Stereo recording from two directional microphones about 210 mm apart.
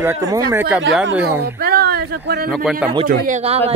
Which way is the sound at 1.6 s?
45° right (ahead or behind).